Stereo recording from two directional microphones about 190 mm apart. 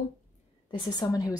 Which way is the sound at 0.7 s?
20° left (ahead or behind).